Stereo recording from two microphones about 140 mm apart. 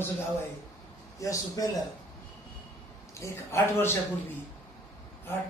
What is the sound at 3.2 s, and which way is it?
Speech, 20° left (ahead or behind).